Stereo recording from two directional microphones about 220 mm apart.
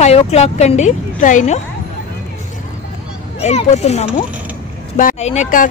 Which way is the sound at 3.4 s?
30° left (ahead or behind).